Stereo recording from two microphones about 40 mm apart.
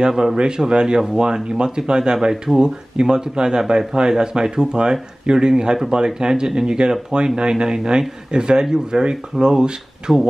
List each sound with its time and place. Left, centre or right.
0.1 s speech: centre